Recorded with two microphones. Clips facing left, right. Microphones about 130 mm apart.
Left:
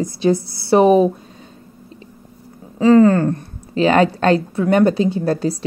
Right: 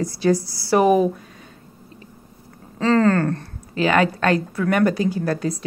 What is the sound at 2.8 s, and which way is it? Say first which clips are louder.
Speech: left 6 dB; 15° left (ahead or behind).